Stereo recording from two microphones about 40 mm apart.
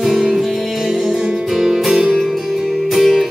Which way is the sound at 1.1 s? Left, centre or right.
Centre.